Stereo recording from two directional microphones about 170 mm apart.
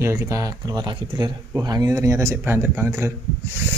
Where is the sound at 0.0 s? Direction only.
15° right (ahead or behind).